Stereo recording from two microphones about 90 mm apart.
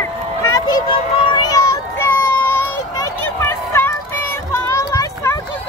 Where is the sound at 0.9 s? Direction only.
65° left (ahead or behind).